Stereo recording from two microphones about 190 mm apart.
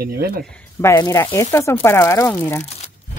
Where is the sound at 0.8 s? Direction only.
15° left (ahead or behind).